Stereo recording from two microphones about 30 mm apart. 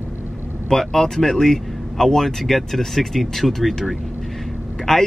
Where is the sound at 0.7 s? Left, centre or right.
Centre.